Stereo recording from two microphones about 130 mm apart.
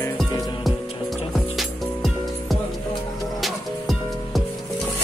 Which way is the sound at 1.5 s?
Centre (ahead or behind).